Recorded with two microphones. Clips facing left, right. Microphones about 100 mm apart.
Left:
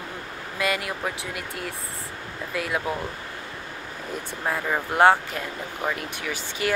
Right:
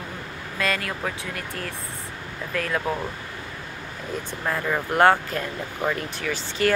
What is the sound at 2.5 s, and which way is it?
Speech, 10° left (ahead or behind).